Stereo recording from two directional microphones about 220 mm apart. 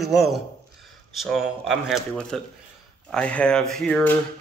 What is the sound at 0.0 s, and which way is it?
Speech, centre (ahead or behind).